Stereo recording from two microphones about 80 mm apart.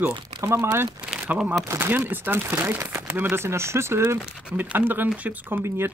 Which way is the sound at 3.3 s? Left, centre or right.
Right.